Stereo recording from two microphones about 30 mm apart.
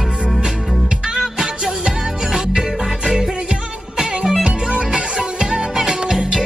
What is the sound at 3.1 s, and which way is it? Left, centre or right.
Music, centre.